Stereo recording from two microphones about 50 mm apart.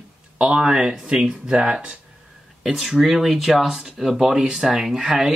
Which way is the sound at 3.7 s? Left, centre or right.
Centre.